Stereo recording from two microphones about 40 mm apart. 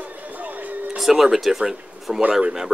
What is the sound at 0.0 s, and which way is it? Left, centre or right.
Music, right.